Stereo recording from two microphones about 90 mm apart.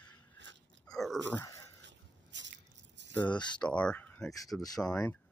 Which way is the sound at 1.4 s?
35° left (ahead or behind).